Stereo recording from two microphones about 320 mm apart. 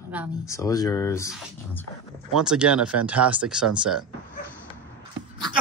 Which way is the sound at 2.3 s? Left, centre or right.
Centre.